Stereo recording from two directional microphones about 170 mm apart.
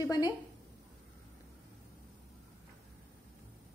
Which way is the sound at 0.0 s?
20° left (ahead or behind).